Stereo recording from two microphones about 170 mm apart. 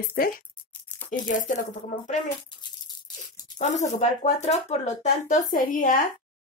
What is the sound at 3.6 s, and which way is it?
Speech, 45° left (ahead or behind).